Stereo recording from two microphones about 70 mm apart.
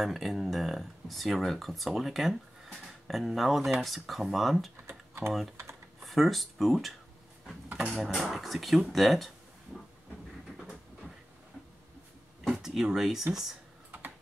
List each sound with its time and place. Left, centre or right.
0.0 s speech: centre
4.8 s typing: right
6.0 s speech: centre
12.4 s speech: centre